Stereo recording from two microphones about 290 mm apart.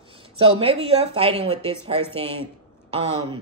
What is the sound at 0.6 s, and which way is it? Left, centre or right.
A woman's voice, centre.